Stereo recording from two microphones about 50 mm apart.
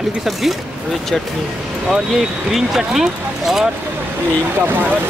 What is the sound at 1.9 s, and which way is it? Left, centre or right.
Speech, centre.